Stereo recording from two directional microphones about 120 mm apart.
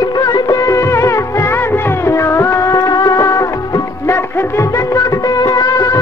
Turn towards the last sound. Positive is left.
turn(degrees=30)  # may be behind; listen again after turning